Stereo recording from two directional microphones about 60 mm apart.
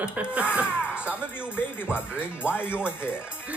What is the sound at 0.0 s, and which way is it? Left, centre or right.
Speech, right.